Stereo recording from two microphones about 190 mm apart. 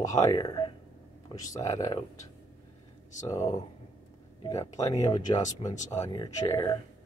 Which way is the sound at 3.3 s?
15° left (ahead or behind).